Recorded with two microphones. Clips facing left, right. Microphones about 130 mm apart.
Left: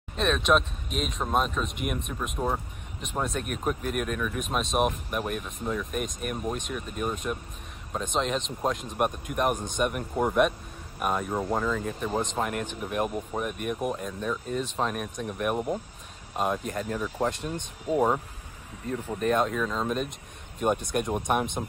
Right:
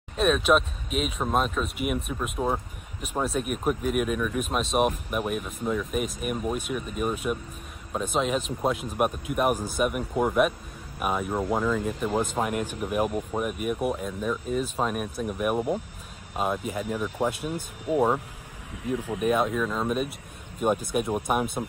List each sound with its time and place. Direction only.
0.2 s speech: 5° right (ahead or behind)
18.7 s speech: 70° right (ahead or behind)
19.1 s speech: 5° right (ahead or behind)